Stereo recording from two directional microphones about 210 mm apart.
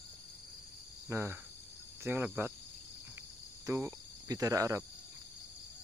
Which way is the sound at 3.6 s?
15° right (ahead or behind).